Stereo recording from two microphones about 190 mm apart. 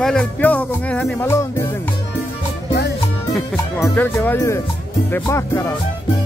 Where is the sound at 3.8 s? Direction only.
10° left (ahead or behind).